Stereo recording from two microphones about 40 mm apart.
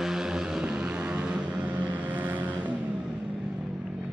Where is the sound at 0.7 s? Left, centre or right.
Right.